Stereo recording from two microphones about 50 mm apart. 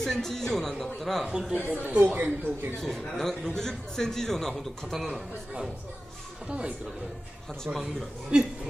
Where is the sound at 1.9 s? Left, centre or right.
Right.